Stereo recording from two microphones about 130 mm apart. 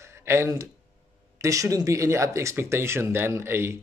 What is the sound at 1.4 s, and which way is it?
Speech, 25° right (ahead or behind).